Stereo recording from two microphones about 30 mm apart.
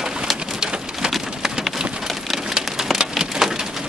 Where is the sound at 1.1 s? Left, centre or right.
Centre.